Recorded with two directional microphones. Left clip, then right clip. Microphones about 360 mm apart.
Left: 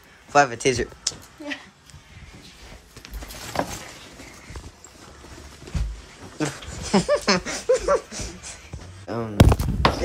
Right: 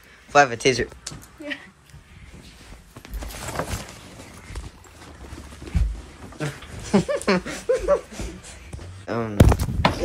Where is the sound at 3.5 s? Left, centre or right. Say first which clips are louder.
Left 3 dB; left.